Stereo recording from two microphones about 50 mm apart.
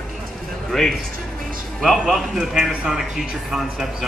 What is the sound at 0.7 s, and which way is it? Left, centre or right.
Speech, centre.